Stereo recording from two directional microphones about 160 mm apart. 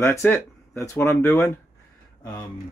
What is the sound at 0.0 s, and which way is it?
Speech, 15° left (ahead or behind).